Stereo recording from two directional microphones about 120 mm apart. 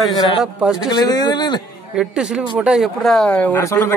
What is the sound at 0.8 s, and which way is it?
Speech, 35° left (ahead or behind).